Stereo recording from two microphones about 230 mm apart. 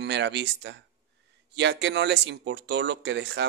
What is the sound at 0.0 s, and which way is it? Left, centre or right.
Speech, right.